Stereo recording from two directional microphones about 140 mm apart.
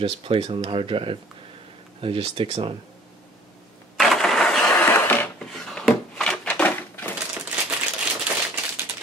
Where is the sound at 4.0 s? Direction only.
Centre (ahead or behind).